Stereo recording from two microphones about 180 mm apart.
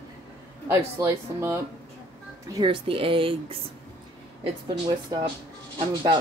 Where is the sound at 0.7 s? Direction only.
15° right (ahead or behind).